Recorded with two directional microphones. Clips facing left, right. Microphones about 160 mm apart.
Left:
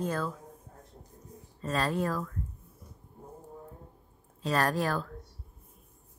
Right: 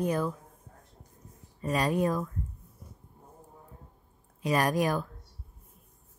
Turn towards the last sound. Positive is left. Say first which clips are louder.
# right 2 dB
turn(degrees=-15)  # may be behind; listen again after turning